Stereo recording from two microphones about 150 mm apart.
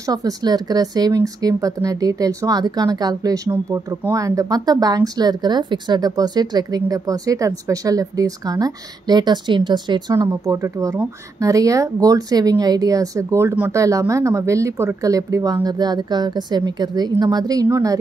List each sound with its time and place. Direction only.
0.0 s speech: 25° right (ahead or behind)